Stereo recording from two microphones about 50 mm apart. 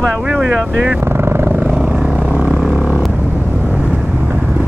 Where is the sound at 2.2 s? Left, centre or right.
Right.